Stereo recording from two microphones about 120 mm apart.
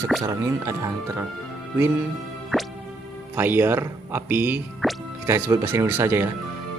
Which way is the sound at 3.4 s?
20° right (ahead or behind).